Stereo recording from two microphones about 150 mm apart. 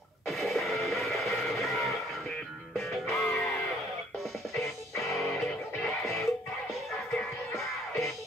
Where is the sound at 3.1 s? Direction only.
20° left (ahead or behind).